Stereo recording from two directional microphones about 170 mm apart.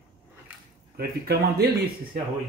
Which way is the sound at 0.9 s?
70° right (ahead or behind).